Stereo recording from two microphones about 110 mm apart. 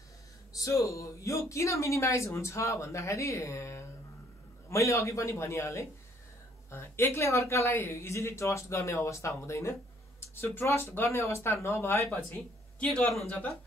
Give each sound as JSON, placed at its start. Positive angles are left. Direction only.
{"t": 0.6, "sound": "speech", "side_deg": 30}
{"t": 12.7, "sound": "speech", "side_deg": 5}